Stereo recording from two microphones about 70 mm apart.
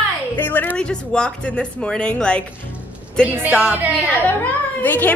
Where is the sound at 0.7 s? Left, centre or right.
Centre.